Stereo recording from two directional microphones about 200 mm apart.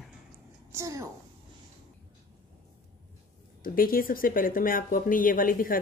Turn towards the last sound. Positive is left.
turn(degrees=45)  # may be behind; listen again after turning